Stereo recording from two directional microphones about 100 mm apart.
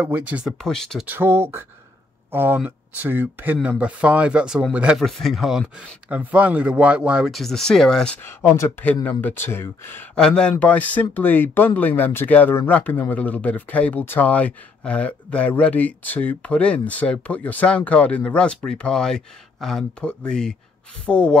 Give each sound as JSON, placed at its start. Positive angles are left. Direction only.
{"t": 0.0, "sound": "speech", "side_deg": -15}
{"t": 0.6, "sound": "speech", "side_deg": 5}
{"t": 1.0, "sound": "speech", "side_deg": -20}
{"t": 4.9, "sound": "speech", "side_deg": 0}
{"t": 6.0, "sound": "speech", "side_deg": -15}
{"t": 8.2, "sound": "speech", "side_deg": 25}
{"t": 10.1, "sound": "speech", "side_deg": 10}